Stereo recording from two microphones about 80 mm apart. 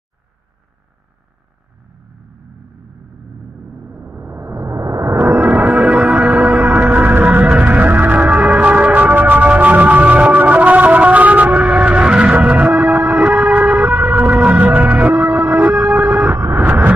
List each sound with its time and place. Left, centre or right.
3.8 s music: centre; by 5.1 s right
5.7 s music: centre
6.3 s music: centre
6.6 s music: centre
16.3 s vehicle: right